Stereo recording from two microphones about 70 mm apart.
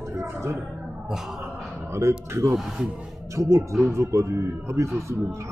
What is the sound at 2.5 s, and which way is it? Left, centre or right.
Speech, centre.